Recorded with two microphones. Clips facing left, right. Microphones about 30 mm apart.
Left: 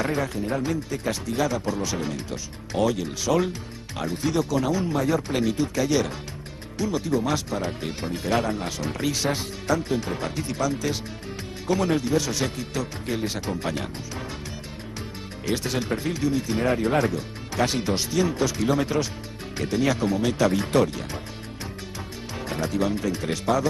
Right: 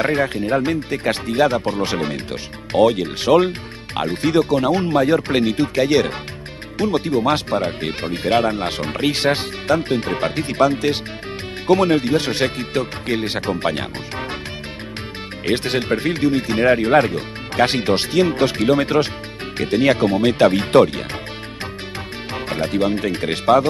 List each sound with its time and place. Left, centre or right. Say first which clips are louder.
0.0 s speech: right 7 dB; right
15.4 s speech: right 7 dB; right
22.3 s speech: right 6 dB; right